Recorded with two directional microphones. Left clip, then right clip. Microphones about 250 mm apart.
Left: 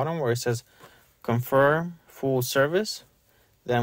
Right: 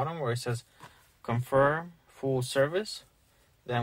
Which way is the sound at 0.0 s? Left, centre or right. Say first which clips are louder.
Left 6 dB; left.